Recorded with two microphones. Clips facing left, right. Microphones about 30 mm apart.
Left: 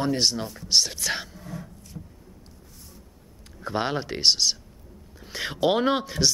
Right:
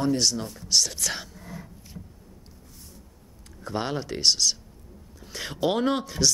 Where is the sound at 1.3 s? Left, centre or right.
Centre.